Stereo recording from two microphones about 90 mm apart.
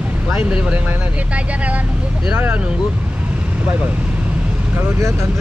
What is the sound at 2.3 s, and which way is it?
Speech, 20° right (ahead or behind).